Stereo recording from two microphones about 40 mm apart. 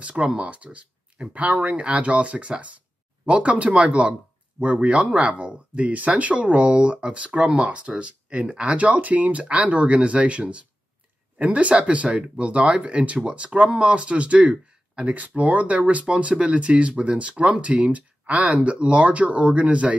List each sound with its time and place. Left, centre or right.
0.3 s speech: right